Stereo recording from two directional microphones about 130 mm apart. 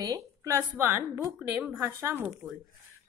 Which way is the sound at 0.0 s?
25° right (ahead or behind).